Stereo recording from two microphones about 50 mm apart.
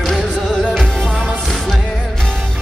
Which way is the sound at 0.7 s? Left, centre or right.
Centre.